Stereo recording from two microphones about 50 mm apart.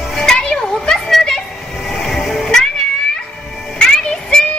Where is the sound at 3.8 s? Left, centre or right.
Centre.